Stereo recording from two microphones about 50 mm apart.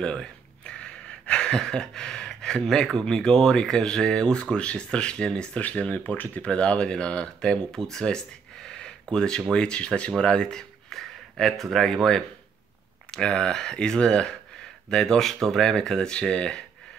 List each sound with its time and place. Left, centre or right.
0.0 s speech: centre
7.8 s a sound: centre
9.5 s speech: centre